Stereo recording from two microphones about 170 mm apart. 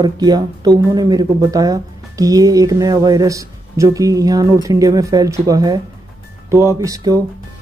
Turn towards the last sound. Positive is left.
turn(degrees=-20)  # may be behind; listen again after turning